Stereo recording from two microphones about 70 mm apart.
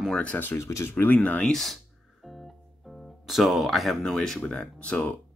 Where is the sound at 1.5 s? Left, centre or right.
Centre.